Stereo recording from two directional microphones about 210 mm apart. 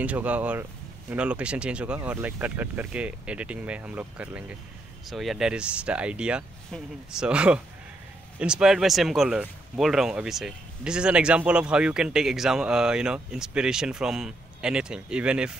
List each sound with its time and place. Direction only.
0.0 s speech: 5° right (ahead or behind)